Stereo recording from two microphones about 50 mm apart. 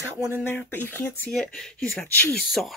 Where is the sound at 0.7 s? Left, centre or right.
Left.